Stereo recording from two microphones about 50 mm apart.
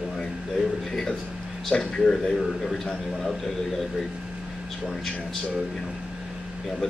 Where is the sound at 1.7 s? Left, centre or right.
Centre.